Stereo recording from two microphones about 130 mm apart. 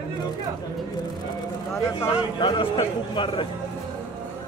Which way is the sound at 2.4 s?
40° left (ahead or behind).